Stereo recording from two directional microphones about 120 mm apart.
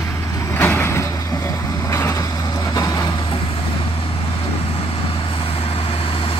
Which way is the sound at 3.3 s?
50° left (ahead or behind).